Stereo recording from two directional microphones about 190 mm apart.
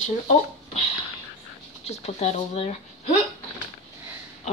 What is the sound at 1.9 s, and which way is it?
Speech, 35° left (ahead or behind).